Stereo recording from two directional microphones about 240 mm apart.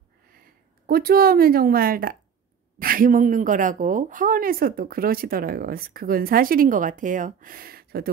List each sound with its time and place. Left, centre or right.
0.8 s speech: right